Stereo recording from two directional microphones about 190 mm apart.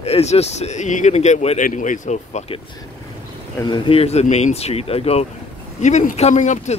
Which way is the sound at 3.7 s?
30° left (ahead or behind).